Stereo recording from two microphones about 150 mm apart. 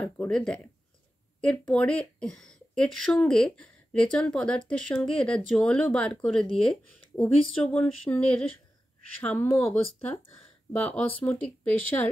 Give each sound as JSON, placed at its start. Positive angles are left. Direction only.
{"t": 0.0, "sound": "speech", "side_deg": 5}